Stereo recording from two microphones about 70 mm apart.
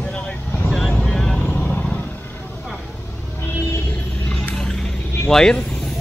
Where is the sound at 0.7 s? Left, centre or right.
Centre.